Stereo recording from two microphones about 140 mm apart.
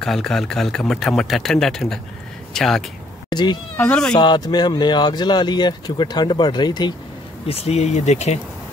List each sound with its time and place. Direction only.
0.0 s speech: 5° left (ahead or behind)
3.3 s speech: 30° left (ahead or behind)
7.4 s speech: 45° left (ahead or behind)